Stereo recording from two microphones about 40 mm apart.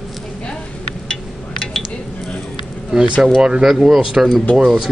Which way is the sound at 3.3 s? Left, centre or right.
Right.